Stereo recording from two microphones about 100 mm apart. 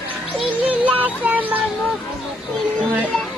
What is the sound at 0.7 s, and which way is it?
Speech, 15° right (ahead or behind).